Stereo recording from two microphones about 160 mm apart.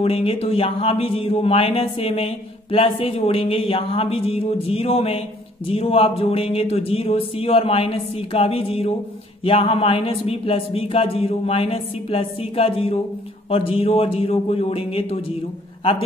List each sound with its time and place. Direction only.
0.0 s speech: 35° left (ahead or behind)